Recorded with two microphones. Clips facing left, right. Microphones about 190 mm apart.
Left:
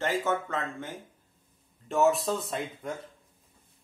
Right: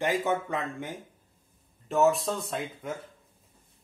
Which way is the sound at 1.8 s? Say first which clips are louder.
Right 1 dB; centre (ahead or behind).